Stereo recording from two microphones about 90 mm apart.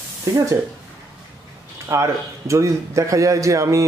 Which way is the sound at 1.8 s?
35° right (ahead or behind).